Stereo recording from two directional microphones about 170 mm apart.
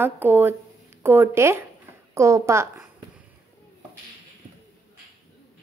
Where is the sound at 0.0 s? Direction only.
10° right (ahead or behind).